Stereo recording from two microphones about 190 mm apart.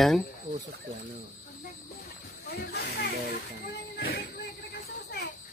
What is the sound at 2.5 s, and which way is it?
Speech, 55° left (ahead or behind).